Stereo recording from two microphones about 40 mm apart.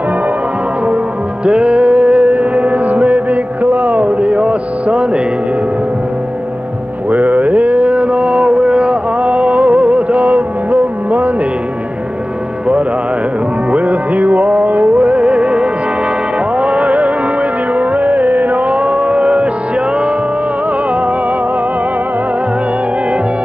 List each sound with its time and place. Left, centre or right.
1.4 s music: right
7.1 s music: right
13.7 s music: right